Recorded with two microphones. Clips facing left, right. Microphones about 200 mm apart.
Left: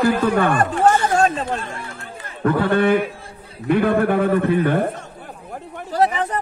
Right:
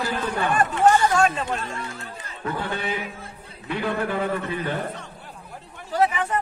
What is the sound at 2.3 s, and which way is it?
Speech, 55° left (ahead or behind).